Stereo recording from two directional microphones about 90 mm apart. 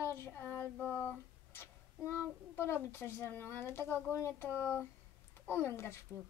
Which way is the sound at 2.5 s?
25° left (ahead or behind).